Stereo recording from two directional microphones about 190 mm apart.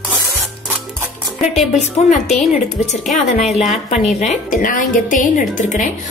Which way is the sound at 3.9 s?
35° left (ahead or behind).